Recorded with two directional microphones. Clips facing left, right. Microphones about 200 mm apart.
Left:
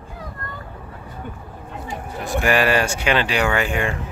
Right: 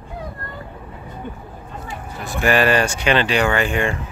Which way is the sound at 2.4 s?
10° left (ahead or behind).